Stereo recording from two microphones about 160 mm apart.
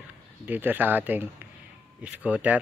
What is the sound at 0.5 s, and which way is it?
Speech, 10° right (ahead or behind).